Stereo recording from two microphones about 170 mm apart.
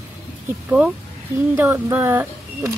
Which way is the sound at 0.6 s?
10° right (ahead or behind).